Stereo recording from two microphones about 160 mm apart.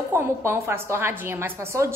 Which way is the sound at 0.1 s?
15° right (ahead or behind).